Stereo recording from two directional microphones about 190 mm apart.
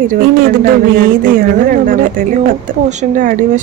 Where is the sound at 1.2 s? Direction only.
45° right (ahead or behind).